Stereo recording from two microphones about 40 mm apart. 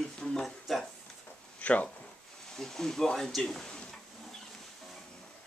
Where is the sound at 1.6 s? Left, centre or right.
Left.